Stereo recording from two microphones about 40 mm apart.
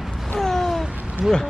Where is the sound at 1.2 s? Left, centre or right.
Centre.